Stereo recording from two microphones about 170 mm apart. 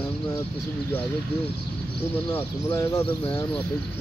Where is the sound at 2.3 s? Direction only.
15° left (ahead or behind).